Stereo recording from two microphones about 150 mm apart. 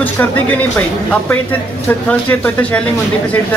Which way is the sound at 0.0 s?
10° left (ahead or behind).